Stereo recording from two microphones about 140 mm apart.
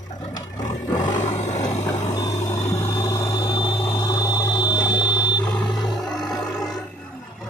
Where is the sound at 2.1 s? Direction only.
20° left (ahead or behind).